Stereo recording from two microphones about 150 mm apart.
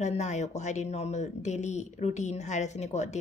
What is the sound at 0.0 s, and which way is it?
A woman's voice, 50° left (ahead or behind).